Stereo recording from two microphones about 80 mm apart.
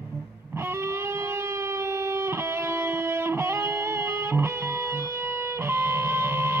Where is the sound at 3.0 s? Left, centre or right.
Right.